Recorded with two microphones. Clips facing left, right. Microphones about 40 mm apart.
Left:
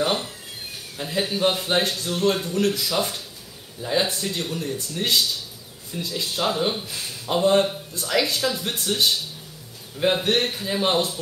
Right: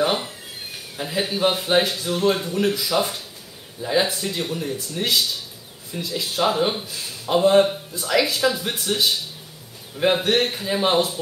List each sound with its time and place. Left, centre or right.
0.0 s a sound: centre
0.9 s speech: centre
1.9 s speech: right
9.9 s speech: centre